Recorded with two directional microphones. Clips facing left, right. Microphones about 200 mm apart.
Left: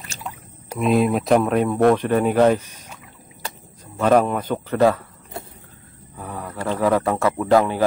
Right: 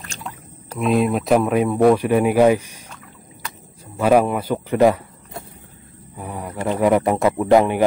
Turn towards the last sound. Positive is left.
turn(degrees=-20)  # may be behind; listen again after turning